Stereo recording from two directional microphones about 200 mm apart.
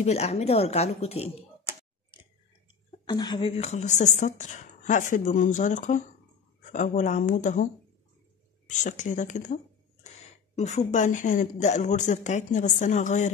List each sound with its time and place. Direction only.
0.0 s speech: 30° left (ahead or behind)
3.1 s speech: 25° left (ahead or behind); by 7.6 s 40° left (ahead or behind)
8.6 s speech: 40° left (ahead or behind)